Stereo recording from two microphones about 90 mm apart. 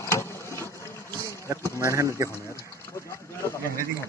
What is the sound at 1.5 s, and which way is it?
Speech, 35° right (ahead or behind).